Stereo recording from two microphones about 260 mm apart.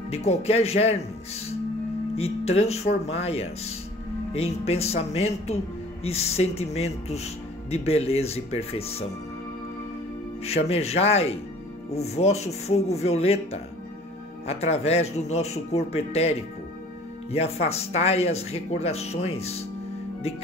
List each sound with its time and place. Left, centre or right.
0.1 s speech: left
2.1 s speech: left
10.4 s speech: left